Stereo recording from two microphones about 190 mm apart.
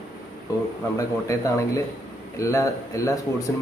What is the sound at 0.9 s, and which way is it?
A man's voice, 15° left (ahead or behind).